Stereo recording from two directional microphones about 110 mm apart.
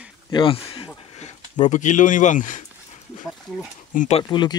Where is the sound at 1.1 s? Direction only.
90° left.